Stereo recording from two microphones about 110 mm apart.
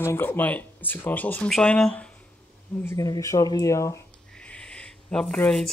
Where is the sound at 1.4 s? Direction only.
5° left (ahead or behind).